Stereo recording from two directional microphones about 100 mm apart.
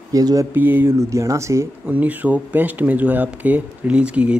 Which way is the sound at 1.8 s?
15° right (ahead or behind).